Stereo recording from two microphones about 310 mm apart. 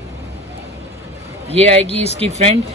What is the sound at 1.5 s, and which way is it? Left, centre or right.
Speech, centre.